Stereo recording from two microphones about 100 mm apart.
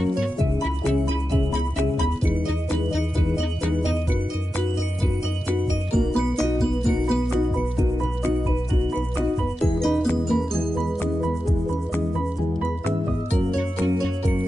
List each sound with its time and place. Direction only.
5.9 s music: 5° left (ahead or behind)
9.6 s music: centre (ahead or behind)